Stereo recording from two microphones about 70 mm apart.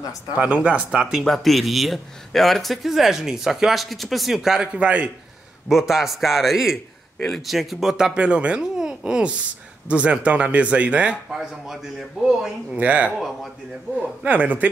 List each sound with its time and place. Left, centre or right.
0.4 s speech: centre
1.1 s speech: centre
4.7 s speech: centre
5.7 s speech: centre
11.3 s speech: centre
12.7 s speech: centre
14.2 s speech: right